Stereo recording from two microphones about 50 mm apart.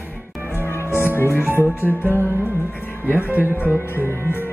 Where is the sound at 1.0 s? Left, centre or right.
Left.